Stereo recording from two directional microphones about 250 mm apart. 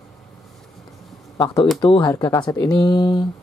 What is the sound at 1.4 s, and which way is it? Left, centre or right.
Speech, centre.